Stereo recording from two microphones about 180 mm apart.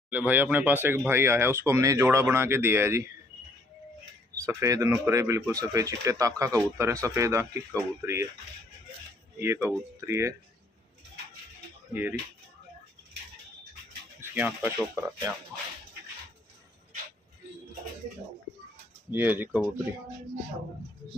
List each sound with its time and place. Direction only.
0.1 s speech: 10° right (ahead or behind)
4.5 s speech: 15° right (ahead or behind)
9.4 s speech: 15° right (ahead or behind)
11.9 s speech: 10° right (ahead or behind)
14.3 s speech: 10° right (ahead or behind)
19.1 s speech: 10° right (ahead or behind)